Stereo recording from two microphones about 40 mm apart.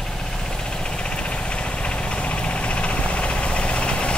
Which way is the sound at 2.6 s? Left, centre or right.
Left.